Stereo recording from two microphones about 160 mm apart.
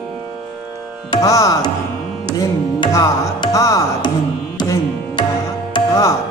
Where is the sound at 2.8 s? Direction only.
25° left (ahead or behind).